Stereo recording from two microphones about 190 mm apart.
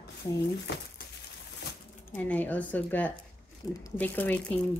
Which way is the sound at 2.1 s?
10° left (ahead or behind).